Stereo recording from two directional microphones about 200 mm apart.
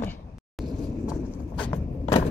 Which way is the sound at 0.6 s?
Centre (ahead or behind).